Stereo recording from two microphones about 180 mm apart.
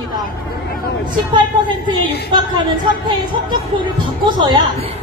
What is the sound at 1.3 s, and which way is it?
Speech, 25° right (ahead or behind).